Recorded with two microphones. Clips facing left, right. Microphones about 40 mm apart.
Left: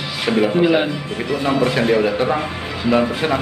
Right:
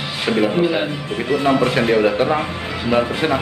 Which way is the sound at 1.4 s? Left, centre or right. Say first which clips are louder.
Right 1 dB; right.